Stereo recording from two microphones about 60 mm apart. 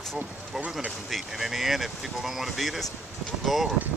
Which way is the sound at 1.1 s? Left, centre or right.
Centre.